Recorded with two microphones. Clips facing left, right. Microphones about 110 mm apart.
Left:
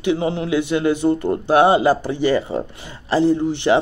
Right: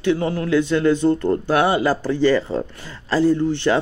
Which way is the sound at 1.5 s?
25° left (ahead or behind).